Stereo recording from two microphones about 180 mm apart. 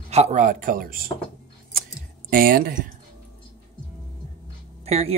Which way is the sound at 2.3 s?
55° right (ahead or behind).